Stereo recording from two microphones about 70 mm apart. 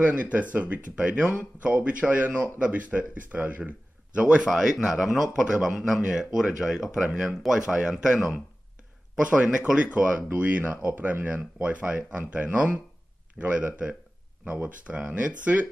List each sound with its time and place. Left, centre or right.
0.0 s speech: right